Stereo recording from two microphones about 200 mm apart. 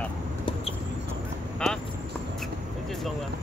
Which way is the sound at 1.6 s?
5° left (ahead or behind).